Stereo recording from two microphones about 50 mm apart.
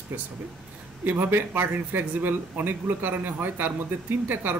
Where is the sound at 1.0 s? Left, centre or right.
Right.